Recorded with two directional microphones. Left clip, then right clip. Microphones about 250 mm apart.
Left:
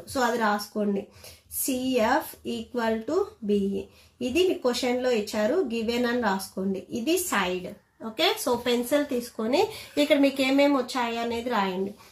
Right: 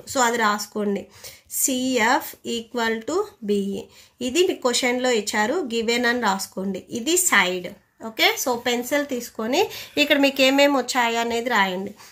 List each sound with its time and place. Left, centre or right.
0.1 s speech: right
1.9 s speech: right
8.0 s speech: right